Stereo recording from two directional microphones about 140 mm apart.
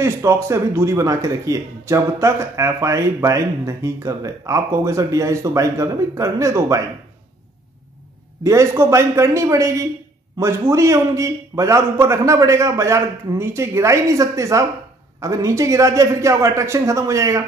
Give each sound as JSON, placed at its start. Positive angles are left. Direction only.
{"t": 0.0, "sound": "speech", "side_deg": -20}
{"t": 8.5, "sound": "speech", "side_deg": -20}